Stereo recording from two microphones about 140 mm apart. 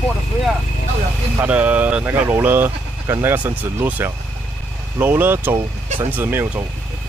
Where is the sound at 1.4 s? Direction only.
10° right (ahead or behind).